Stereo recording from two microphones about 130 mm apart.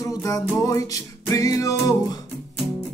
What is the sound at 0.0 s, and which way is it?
Music, 25° left (ahead or behind).